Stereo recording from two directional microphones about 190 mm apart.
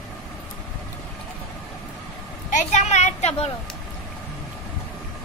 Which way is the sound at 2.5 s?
40° left (ahead or behind).